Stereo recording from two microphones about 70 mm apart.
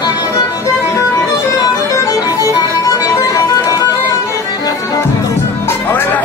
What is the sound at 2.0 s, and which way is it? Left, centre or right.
Music, left.